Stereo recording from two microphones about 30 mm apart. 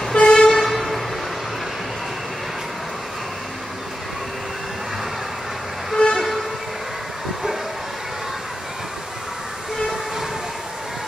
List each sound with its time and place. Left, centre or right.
0.1 s vehicle: left
0.5 s vehicle: centre
6.0 s vehicle: left